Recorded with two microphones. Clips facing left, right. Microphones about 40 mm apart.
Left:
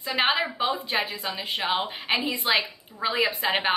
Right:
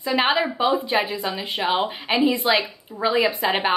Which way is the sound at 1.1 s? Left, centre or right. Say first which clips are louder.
Right 5 dB; right.